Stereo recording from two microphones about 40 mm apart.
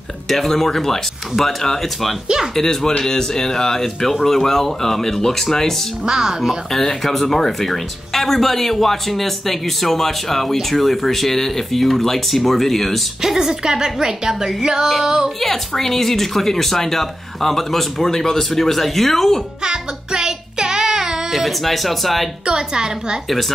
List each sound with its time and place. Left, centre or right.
0.3 s speech: centre
6.0 s a woman's voice: centre
6.7 s speech: centre
13.2 s a woman's voice: centre
15.4 s speech: centre
19.6 s music: centre
21.3 s speech: centre
22.5 s a woman's voice: right